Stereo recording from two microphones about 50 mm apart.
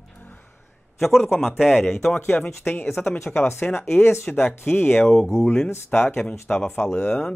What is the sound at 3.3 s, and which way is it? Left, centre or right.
Speech, left.